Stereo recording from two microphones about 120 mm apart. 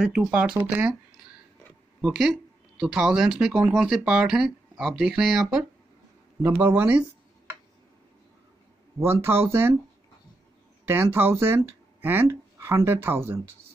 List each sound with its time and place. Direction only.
0.0 s speech: 10° right (ahead or behind)
2.8 s speech: 5° right (ahead or behind)
6.4 s speech: 15° right (ahead or behind)
9.0 s speech: 20° right (ahead or behind)
10.9 s speech: 20° right (ahead or behind)